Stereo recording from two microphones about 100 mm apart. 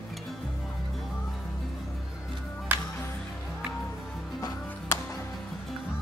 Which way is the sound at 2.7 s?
20° right (ahead or behind).